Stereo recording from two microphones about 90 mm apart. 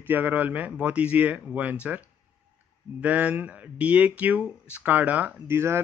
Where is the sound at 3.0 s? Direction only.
15° right (ahead or behind).